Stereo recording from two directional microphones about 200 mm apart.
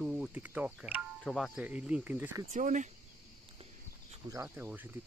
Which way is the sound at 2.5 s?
40° right (ahead or behind).